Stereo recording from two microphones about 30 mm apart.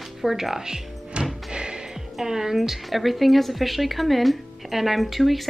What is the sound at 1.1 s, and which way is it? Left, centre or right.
Music, right.